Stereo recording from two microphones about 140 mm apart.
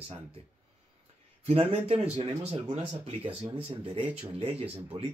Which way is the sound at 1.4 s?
45° right (ahead or behind).